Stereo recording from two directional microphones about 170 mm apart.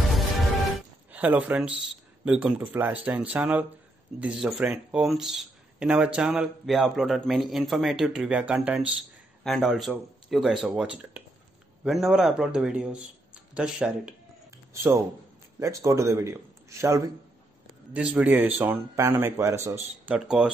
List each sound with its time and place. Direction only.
0.7 s music: 10° right (ahead or behind)
2.2 s speech: 5° right (ahead or behind)
14.7 s speech: 15° right (ahead or behind)
17.9 s speech: 5° right (ahead or behind)
20.2 s speech: 5° right (ahead or behind)